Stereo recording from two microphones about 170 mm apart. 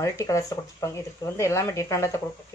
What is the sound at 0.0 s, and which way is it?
Speech, 20° left (ahead or behind).